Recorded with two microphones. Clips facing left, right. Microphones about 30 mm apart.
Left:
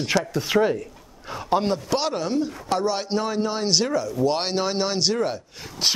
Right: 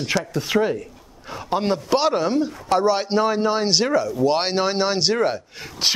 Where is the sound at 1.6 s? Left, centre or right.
Centre.